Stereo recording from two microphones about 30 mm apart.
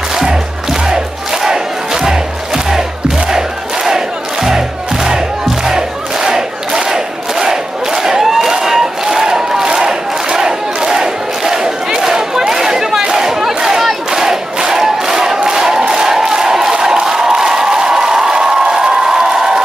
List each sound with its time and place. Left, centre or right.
1.4 s crowd: centre
5.7 s battle cry: centre
12.0 s a sound: centre
13.1 s battle cry: centre
14.1 s crowd: centre
16.9 s a sound: right